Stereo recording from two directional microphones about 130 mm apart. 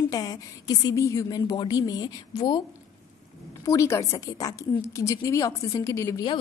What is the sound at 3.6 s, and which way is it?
A woman's voice, 20° left (ahead or behind).